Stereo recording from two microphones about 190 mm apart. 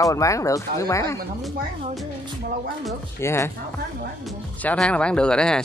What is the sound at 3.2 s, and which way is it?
Speech, 15° left (ahead or behind).